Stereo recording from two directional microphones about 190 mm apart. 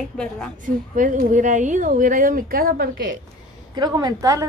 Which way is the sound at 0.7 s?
45° right (ahead or behind).